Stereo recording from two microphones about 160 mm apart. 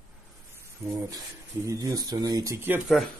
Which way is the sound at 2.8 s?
Centre (ahead or behind).